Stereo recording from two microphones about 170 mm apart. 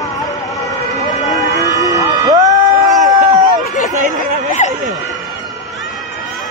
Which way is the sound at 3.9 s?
50° right (ahead or behind).